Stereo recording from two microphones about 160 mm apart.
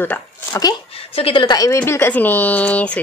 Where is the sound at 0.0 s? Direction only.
15° left (ahead or behind).